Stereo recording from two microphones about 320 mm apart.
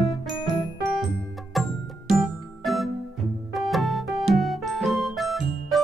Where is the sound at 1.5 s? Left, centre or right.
Centre.